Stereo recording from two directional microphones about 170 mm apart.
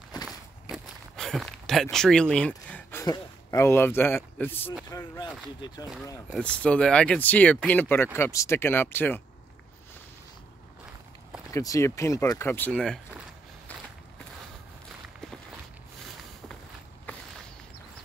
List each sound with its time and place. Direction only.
0.1 s walk: 25° left (ahead or behind)
0.7 s speech: centre (ahead or behind); by 5.3 s 20° left (ahead or behind)
6.3 s speech: 5° left (ahead or behind)
11.5 s speech: 20° left (ahead or behind)
12.7 s speech: centre (ahead or behind)